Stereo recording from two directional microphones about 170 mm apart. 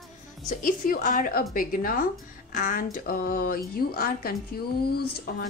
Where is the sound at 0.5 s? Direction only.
55° left (ahead or behind).